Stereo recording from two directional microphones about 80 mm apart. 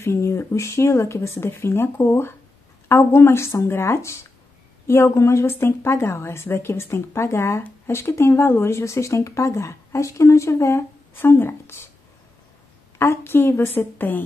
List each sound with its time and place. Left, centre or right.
0.0 s speech: left
13.0 s a woman's voice: left